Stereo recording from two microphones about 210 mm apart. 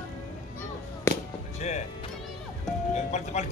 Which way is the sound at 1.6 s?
35° left (ahead or behind).